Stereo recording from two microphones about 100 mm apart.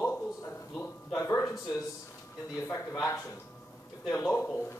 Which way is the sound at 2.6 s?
25° left (ahead or behind).